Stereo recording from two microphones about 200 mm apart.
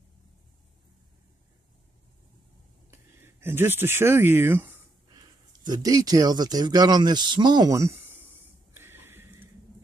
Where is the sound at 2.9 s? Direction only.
10° right (ahead or behind).